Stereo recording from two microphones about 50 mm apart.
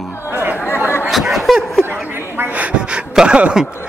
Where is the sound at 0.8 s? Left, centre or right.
Left.